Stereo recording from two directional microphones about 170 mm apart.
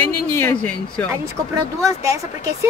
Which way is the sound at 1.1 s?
20° right (ahead or behind).